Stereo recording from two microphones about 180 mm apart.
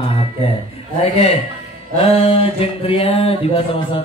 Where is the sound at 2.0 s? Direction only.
30° left (ahead or behind).